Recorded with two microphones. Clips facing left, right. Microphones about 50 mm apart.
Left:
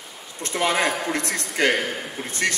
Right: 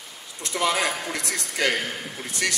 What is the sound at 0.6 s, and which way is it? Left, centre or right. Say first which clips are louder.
A man's voice: left 2 dB; left.